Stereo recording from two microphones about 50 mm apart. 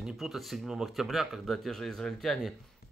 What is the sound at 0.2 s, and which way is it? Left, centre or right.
Speech, centre.